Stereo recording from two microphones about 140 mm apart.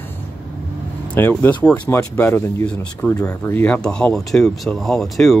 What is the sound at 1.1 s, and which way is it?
Speech, 15° left (ahead or behind).